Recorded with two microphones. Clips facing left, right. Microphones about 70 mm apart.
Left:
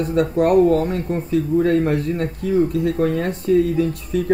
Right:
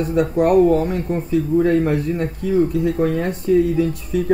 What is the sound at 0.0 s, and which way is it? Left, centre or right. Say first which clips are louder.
Speech: right 1 dB; centre.